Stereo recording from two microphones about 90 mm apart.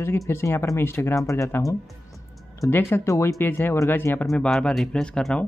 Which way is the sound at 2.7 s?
25° left (ahead or behind).